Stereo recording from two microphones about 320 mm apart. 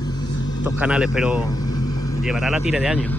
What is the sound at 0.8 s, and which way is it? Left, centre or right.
Speech, centre.